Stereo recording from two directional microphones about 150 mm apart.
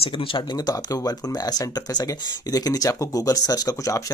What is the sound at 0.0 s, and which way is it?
Speech, 35° left (ahead or behind).